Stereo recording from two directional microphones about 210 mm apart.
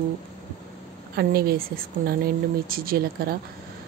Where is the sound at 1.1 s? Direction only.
45° right (ahead or behind).